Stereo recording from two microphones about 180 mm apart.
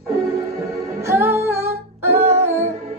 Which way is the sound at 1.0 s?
15° right (ahead or behind).